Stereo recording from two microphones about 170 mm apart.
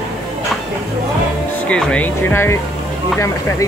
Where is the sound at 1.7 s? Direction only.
5° left (ahead or behind).